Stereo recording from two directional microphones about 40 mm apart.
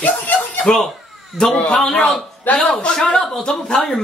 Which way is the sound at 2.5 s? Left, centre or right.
Left.